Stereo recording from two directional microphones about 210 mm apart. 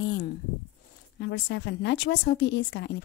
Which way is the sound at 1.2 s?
60° left (ahead or behind).